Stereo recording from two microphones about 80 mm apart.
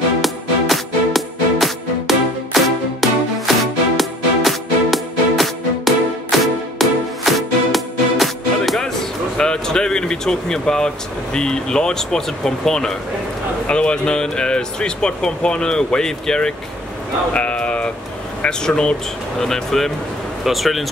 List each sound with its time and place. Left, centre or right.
0.2 s music: centre
9.4 s air conditioning: centre
11.3 s speech: centre
17.3 s a sound: centre
18.4 s speech: centre